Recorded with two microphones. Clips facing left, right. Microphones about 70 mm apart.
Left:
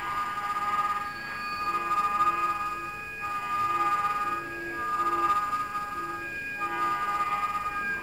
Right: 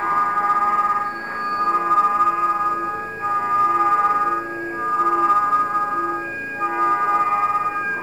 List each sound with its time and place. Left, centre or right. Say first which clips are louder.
0.0 s sonar: right 12 dB; right
1.6 s singing bowl: right 10 dB; right
3.3 s music: right 10 dB; right
6.6 s music: right 10 dB; right